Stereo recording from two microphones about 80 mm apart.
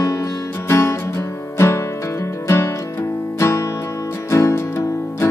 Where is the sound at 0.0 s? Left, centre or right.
Left.